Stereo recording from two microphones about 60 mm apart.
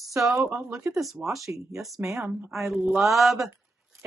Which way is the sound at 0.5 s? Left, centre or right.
Centre.